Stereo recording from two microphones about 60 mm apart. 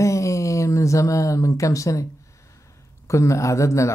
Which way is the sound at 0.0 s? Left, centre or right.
Left.